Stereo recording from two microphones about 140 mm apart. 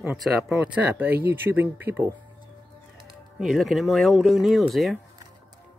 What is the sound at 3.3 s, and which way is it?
Speech, centre (ahead or behind).